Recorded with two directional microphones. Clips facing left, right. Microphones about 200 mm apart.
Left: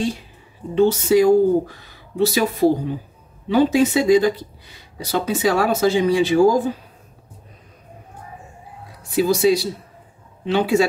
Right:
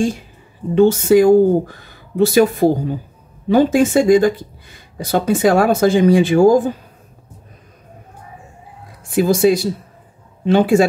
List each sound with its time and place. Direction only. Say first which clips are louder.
0.7 s speech: right 4 dB; 50° right (ahead or behind)
9.1 s speech: right 3 dB; 50° right (ahead or behind)